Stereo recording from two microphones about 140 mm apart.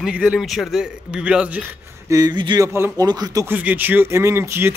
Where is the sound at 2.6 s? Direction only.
20° right (ahead or behind).